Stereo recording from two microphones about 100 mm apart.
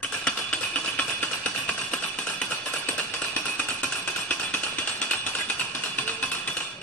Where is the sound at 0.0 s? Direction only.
15° left (ahead or behind).